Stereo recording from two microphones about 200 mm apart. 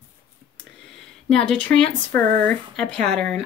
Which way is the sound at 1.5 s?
5° left (ahead or behind).